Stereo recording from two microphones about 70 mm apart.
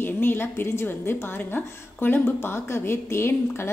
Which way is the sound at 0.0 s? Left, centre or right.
Left.